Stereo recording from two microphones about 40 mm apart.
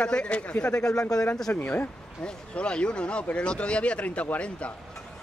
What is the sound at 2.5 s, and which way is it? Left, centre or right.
Speech, left.